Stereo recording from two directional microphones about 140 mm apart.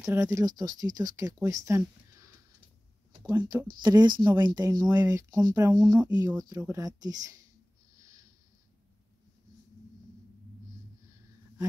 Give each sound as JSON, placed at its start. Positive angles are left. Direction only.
{"t": 0.0, "sound": "speech", "side_deg": -20}